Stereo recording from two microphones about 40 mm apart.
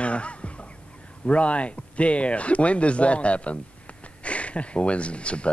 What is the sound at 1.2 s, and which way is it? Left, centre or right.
Speech, left.